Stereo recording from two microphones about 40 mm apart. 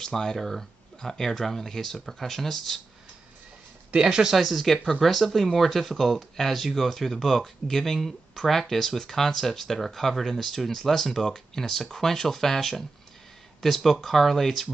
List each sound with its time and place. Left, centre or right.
0.0 s speech: centre
3.9 s speech: centre
4.4 s speech: centre